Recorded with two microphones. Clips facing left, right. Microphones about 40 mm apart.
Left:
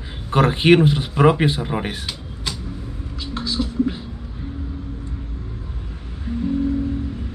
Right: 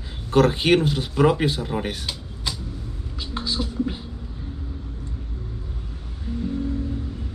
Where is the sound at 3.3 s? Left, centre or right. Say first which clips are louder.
Left 3 dB; centre.